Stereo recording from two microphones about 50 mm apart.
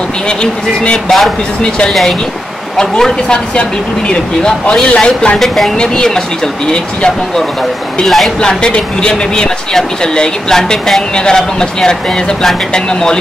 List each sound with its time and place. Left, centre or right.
0.4 s speech: centre
1.9 s speech: centre
8.0 s speech: centre
8.4 s speech: centre